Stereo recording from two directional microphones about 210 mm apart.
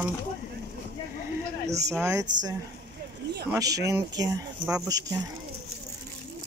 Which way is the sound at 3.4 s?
15° right (ahead or behind).